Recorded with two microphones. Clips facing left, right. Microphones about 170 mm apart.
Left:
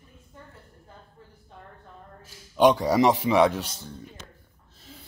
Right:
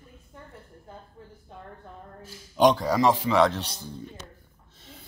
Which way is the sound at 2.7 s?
20° left (ahead or behind).